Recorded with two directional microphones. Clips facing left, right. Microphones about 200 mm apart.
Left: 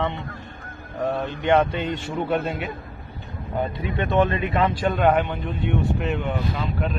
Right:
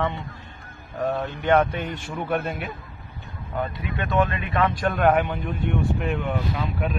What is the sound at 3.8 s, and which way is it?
Speech, 30° left (ahead or behind).